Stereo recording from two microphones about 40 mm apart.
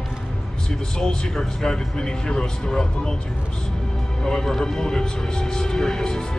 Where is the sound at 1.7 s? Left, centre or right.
Centre.